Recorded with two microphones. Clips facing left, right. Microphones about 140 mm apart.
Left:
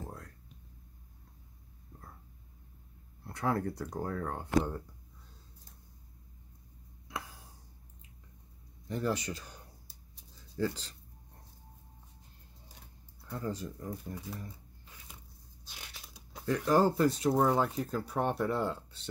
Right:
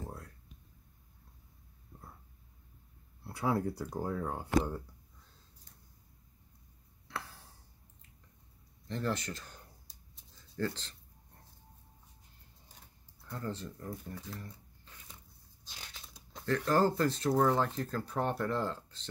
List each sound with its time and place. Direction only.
3.3 s speech: 5° right (ahead or behind)
7.1 s a sound: 15° left (ahead or behind)
8.8 s speech: 10° left (ahead or behind)
13.3 s speech: 10° left (ahead or behind)
14.0 s shuffling cards: 15° left (ahead or behind)
15.6 s speech: 10° left (ahead or behind)